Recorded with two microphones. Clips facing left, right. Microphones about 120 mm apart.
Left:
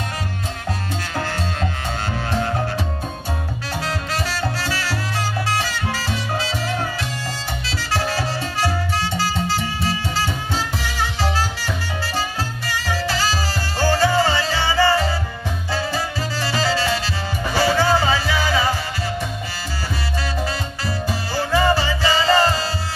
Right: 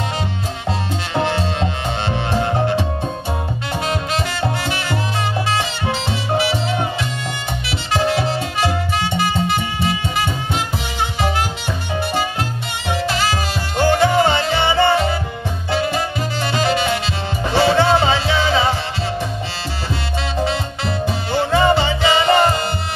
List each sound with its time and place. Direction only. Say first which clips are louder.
0.7 s music: right 5 dB; 25° right (ahead or behind)
3.8 s music: right 4 dB; 20° right (ahead or behind)
20.3 s music: right 5 dB; 25° right (ahead or behind)